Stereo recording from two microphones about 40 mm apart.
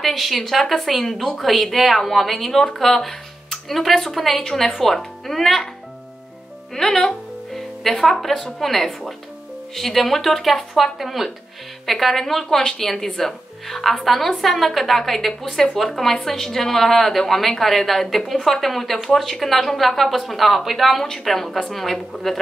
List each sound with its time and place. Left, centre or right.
0.0 s speech: centre
6.7 s speech: centre